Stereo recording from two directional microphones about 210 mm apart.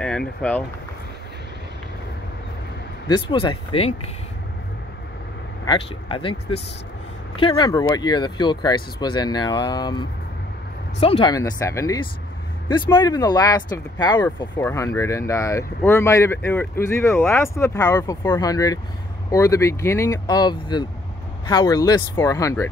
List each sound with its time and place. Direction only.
0.0 s speech: 5° left (ahead or behind)
3.1 s speech: 25° left (ahead or behind)
5.7 s speech: 25° left (ahead or behind)
7.3 s speech: 20° left (ahead or behind)